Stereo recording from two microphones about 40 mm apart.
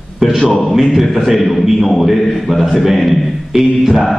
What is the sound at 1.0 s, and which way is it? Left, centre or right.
Speech, centre.